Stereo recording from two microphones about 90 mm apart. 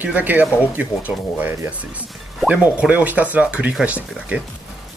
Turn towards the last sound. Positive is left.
turn(degrees=-15)  # may be behind; listen again after turning